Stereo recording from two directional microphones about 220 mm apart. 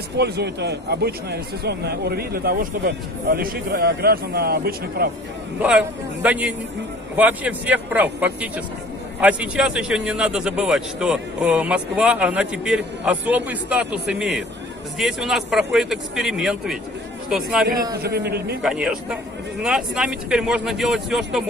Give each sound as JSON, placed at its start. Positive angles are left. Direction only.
{"t": 0.2, "sound": "a man's voice", "side_deg": -50}
{"t": 5.6, "sound": "a man's voice", "side_deg": -5}
{"t": 18.0, "sound": "a man's voice", "side_deg": -45}
{"t": 18.6, "sound": "a man's voice", "side_deg": -5}